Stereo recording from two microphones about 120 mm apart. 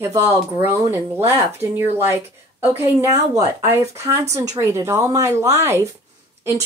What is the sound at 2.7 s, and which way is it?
Speech, 20° right (ahead or behind).